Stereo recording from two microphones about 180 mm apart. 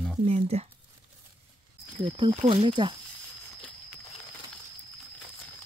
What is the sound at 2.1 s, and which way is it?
Speech, 30° right (ahead or behind).